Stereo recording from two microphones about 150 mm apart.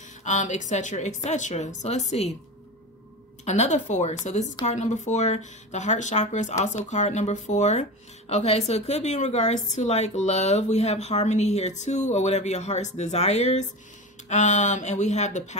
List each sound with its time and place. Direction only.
0.2 s a woman's voice: 55° left (ahead or behind)
3.4 s a woman's voice: 50° left (ahead or behind)